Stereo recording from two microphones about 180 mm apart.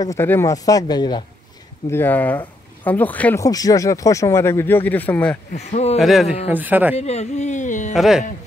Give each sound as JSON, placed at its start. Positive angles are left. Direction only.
{"t": 0.0, "sound": "speech", "side_deg": 15}
{"t": 1.9, "sound": "speech", "side_deg": 10}
{"t": 3.4, "sound": "speech", "side_deg": 20}
{"t": 5.5, "sound": "speech", "side_deg": 40}
{"t": 5.9, "sound": "speech", "side_deg": 0}
{"t": 7.0, "sound": "speech", "side_deg": 35}
{"t": 7.9, "sound": "speech", "side_deg": 0}